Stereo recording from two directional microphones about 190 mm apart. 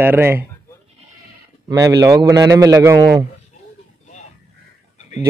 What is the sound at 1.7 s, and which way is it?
A man's voice, 20° right (ahead or behind).